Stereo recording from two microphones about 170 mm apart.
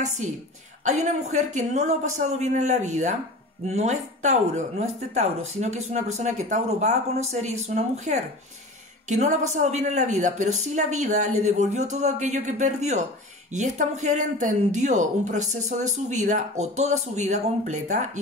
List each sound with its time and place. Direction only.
0.0 s speech: 45° right (ahead or behind)